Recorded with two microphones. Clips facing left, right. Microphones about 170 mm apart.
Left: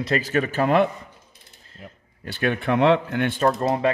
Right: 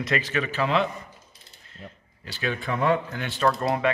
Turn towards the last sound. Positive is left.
turn(degrees=25)  # may be behind; listen again after turning